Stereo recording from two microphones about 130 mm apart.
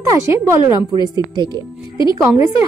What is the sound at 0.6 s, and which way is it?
Speech, 35° left (ahead or behind).